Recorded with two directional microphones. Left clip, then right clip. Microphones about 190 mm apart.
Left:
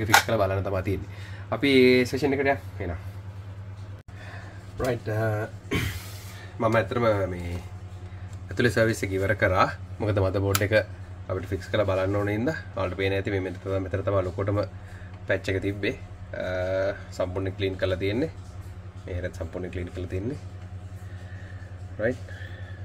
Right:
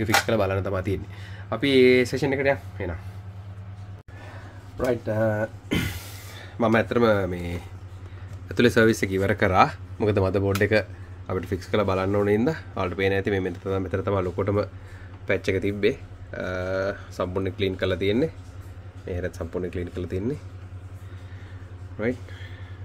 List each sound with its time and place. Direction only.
0.0 s speech: 30° right (ahead or behind)
5.0 s speech: 60° right (ahead or behind)
8.5 s speech: 55° right (ahead or behind); by 10.9 s 30° right (ahead or behind)
11.2 s speech: 45° right (ahead or behind)